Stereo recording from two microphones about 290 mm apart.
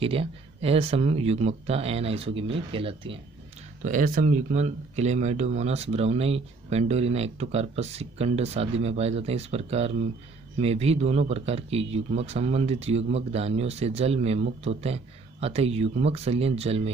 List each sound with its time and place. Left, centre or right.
0.0 s speech: centre